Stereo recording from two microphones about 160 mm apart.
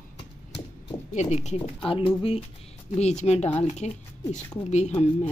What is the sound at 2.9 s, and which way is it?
Speech, 45° left (ahead or behind).